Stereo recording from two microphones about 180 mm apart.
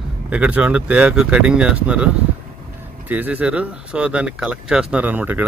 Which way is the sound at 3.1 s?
10° right (ahead or behind).